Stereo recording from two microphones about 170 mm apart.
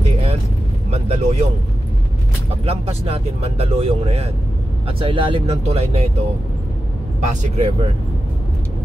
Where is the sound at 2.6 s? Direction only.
35° right (ahead or behind).